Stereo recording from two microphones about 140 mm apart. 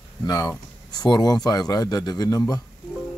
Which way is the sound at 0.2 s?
30° left (ahead or behind).